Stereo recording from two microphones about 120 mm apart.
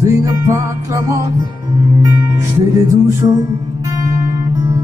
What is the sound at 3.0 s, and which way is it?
Music, 25° right (ahead or behind).